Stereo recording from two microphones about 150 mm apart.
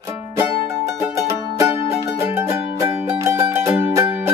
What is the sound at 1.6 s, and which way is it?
Music, 20° right (ahead or behind).